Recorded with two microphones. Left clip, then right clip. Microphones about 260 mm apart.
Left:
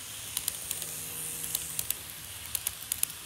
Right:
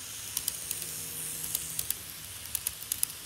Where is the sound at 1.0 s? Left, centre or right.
Left.